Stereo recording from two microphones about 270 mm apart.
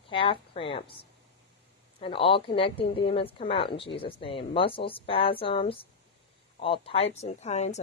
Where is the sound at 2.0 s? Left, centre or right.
Centre.